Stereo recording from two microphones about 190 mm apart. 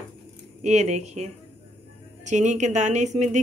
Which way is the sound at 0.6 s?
35° right (ahead or behind).